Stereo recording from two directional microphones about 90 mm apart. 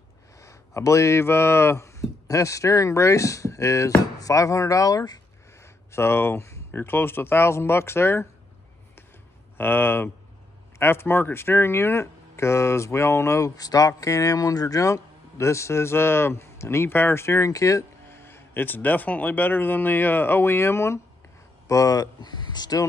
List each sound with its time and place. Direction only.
0.4 s speech: 35° left (ahead or behind)
5.9 s speech: 30° left (ahead or behind)
9.6 s speech: 25° left (ahead or behind)
18.1 s speech: 25° left (ahead or behind)
21.6 s speech: 40° left (ahead or behind)